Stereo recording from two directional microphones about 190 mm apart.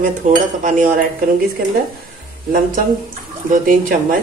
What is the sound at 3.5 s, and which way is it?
Speech, 45° right (ahead or behind).